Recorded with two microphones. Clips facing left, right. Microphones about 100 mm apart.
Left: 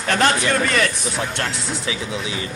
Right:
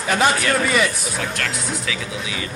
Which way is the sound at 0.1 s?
10° right (ahead or behind).